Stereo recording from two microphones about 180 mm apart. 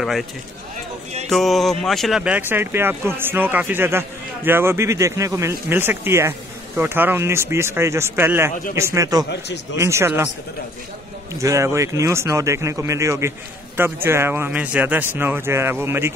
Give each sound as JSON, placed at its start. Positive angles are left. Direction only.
{"t": 1.3, "sound": "speech", "side_deg": 0}
{"t": 9.3, "sound": "speech", "side_deg": 75}
{"t": 9.8, "sound": "speech", "side_deg": -15}
{"t": 11.3, "sound": "speech", "side_deg": -15}